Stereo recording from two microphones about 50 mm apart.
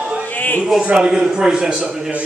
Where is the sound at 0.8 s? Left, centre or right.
Centre.